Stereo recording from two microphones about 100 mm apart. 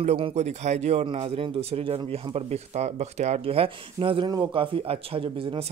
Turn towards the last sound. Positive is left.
turn(degrees=-60)  # may be behind; listen again after turning